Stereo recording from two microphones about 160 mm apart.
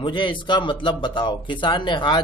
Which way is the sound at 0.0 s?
30° left (ahead or behind).